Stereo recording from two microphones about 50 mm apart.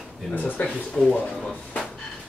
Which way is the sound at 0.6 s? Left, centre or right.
Left.